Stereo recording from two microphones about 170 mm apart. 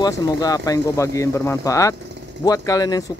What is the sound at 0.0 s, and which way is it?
Speech, 20° left (ahead or behind).